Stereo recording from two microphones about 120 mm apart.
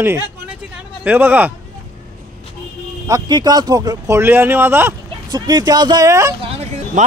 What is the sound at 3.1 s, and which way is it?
Speech, 30° right (ahead or behind).